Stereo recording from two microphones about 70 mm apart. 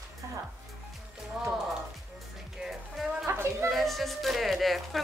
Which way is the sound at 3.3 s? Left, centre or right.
Right.